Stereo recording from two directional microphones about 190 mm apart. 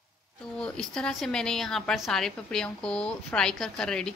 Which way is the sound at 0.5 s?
5° left (ahead or behind).